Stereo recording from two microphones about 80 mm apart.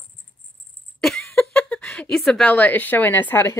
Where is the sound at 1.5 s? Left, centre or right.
Centre.